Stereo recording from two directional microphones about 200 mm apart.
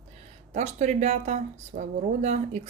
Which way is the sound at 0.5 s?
35° right (ahead or behind).